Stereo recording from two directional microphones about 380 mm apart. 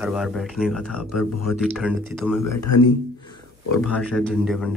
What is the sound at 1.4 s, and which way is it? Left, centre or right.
Speech, centre.